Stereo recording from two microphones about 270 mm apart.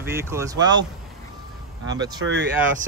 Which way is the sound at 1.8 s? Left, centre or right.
Centre.